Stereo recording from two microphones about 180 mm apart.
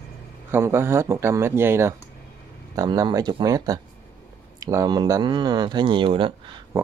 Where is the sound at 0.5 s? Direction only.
15° right (ahead or behind); by 6.6 s 30° right (ahead or behind).